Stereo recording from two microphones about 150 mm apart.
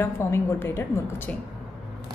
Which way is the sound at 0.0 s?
15° left (ahead or behind).